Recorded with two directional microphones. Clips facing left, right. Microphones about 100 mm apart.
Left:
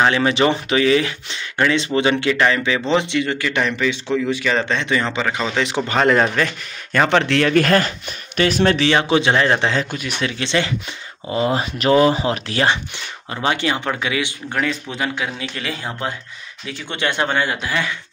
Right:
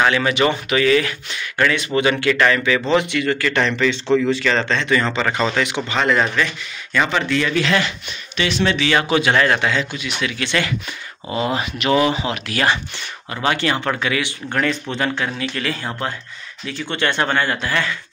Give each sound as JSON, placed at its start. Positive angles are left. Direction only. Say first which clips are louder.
{"t": 0.0, "sound": "speech", "louder": "left 1 dB", "side_deg": 30}
{"t": 5.2, "sound": "speech", "louder": "right 2 dB", "side_deg": 5}
{"t": 5.9, "sound": "speech", "louder": "left 4 dB", "side_deg": 40}
{"t": 7.1, "sound": "speech", "louder": "left 4 dB", "side_deg": 65}
{"t": 8.8, "sound": "speech", "louder": "left 1 dB", "side_deg": 25}
{"t": 9.8, "sound": "speech", "louder": "left 1 dB", "side_deg": 50}
{"t": 10.2, "sound": "speech", "louder": "left 1 dB", "side_deg": 25}